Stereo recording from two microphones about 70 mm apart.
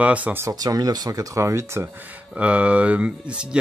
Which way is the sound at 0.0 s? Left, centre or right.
Centre.